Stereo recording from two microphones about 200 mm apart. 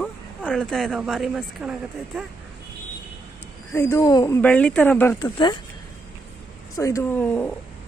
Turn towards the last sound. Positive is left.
turn(degrees=10)  # may be behind; listen again after turning